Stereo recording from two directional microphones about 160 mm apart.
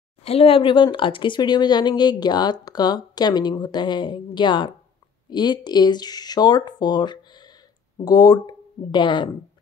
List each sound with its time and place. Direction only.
0.2 s speech: 40° left (ahead or behind)